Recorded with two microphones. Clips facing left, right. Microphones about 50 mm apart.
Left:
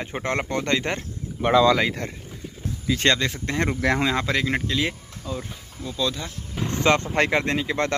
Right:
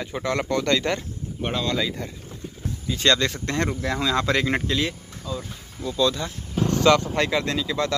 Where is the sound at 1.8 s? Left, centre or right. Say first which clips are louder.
Left 3 dB; left.